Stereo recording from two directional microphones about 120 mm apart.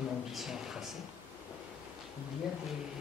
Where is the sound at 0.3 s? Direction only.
5° right (ahead or behind).